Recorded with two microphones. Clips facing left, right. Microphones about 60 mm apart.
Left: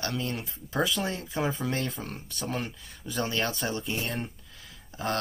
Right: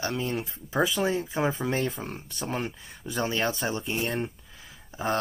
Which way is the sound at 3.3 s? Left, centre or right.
Centre.